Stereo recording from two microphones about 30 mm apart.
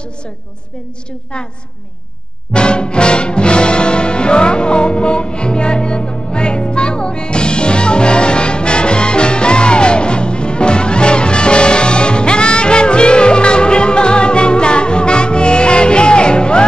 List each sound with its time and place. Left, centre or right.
2.5 s music: left